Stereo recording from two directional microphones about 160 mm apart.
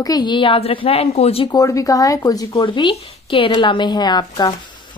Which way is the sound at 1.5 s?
20° left (ahead or behind).